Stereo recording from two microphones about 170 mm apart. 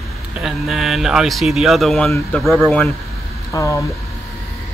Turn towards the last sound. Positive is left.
turn(degrees=20)  # may be behind; listen again after turning